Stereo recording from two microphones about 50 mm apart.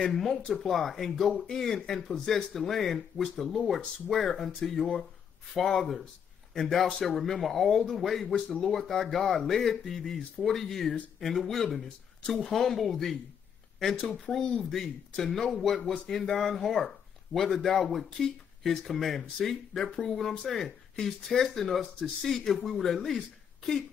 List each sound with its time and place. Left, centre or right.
0.0 s speech: centre
0.3 s speech: centre
0.6 s speech: centre